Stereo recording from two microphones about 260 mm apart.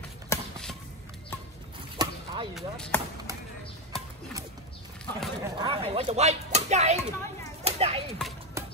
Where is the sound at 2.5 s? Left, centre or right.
Centre.